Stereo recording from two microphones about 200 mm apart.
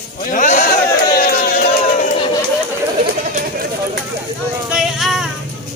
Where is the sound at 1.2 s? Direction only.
50° left (ahead or behind).